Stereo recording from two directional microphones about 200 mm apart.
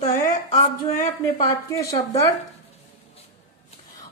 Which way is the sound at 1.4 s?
15° left (ahead or behind).